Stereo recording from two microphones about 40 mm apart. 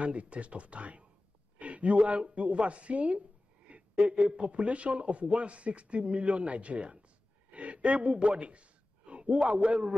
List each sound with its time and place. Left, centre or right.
0.0 s a man's voice: right
3.7 s a sound: right
4.3 s a man's voice: right